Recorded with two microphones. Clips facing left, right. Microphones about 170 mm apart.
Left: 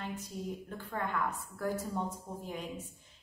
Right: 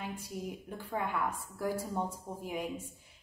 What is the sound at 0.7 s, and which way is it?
A woman's voice, 10° right (ahead or behind).